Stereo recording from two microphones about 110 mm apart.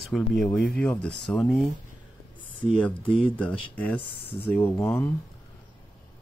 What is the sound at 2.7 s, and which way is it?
Speech, 10° left (ahead or behind).